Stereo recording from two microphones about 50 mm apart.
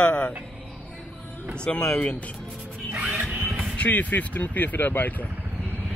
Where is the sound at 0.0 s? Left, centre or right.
Left.